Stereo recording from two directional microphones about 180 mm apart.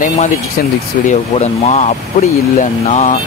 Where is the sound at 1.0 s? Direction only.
40° left (ahead or behind).